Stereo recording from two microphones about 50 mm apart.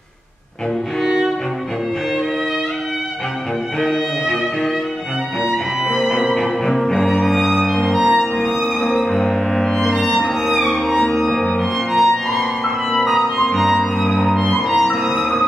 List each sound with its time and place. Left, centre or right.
1.0 s music: centre
3.8 s music: centre
5.4 s music: centre
6.4 s music: centre
8.9 s music: centre
11.2 s organ: centre
11.9 s music: centre
14.7 s music: centre
15.1 s music: left